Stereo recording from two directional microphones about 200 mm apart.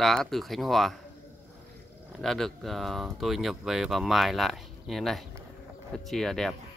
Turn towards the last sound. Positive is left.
turn(degrees=0)  # may be behind; listen again after turning